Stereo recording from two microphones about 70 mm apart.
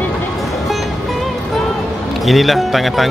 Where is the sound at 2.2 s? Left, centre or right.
Centre.